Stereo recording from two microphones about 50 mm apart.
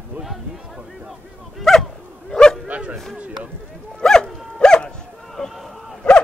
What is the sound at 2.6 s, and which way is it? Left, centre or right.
Speech, right.